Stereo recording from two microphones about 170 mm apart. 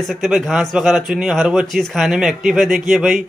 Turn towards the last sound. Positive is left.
turn(degrees=0)  # may be behind; listen again after turning